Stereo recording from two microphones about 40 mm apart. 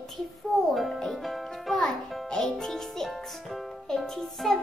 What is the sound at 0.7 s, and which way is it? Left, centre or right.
Music, centre.